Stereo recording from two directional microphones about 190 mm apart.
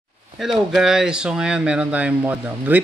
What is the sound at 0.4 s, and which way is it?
Speech, centre (ahead or behind).